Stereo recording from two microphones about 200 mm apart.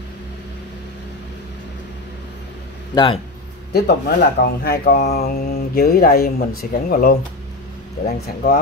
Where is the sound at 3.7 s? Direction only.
55° left (ahead or behind).